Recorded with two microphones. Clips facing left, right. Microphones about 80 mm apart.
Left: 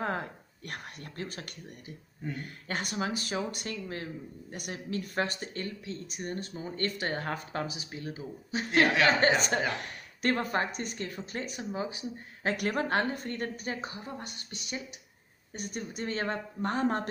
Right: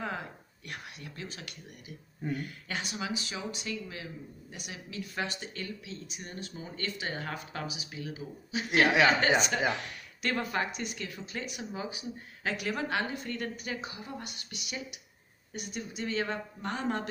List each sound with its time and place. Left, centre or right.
0.0 s speech: left
12.5 s speech: left